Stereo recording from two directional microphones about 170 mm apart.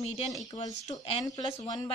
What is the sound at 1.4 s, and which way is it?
Speech, 25° left (ahead or behind).